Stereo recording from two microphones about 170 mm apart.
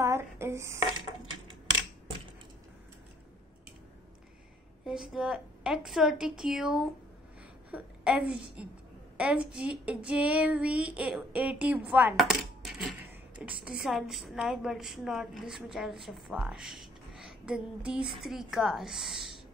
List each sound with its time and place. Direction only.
0.0 s speech: 15° right (ahead or behind)
4.8 s a woman's voice: 5° right (ahead or behind)
9.1 s child singing: 5° right (ahead or behind)
12.2 s coin: centre (ahead or behind)
13.4 s a woman's voice: 5° right (ahead or behind)